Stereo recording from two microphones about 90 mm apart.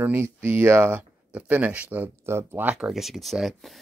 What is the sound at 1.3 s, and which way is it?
Speech, 15° right (ahead or behind).